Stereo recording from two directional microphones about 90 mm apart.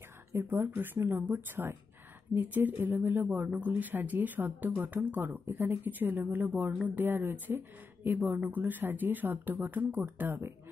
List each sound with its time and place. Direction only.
0.3 s speech: 30° right (ahead or behind)